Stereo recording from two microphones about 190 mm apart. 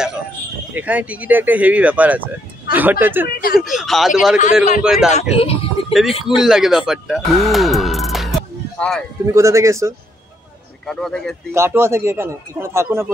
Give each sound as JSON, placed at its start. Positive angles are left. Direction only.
{"t": 0.7, "sound": "speech", "side_deg": -10}
{"t": 3.3, "sound": "speech", "side_deg": 55}
{"t": 3.6, "sound": "speech", "side_deg": 0}
{"t": 5.3, "sound": "speech", "side_deg": 30}
{"t": 6.2, "sound": "speech", "side_deg": 0}
{"t": 6.9, "sound": "music", "side_deg": 0}
{"t": 9.2, "sound": "speech", "side_deg": -15}
{"t": 10.9, "sound": "speech", "side_deg": 0}
{"t": 11.5, "sound": "speech", "side_deg": -15}